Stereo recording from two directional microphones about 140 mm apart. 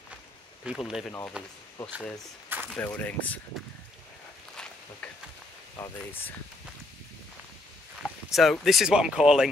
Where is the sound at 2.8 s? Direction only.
10° left (ahead or behind).